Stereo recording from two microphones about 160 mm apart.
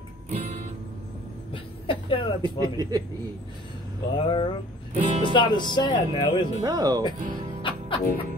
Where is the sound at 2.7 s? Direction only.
25° right (ahead or behind).